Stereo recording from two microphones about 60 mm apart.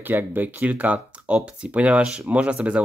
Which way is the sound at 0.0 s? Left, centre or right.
Right.